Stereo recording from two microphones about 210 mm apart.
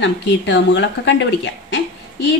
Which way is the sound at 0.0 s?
60° left (ahead or behind).